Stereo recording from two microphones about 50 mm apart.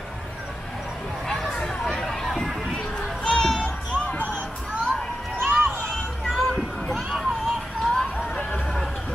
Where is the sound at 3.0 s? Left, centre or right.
Centre.